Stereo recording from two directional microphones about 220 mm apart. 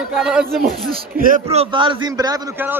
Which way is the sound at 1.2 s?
35° right (ahead or behind).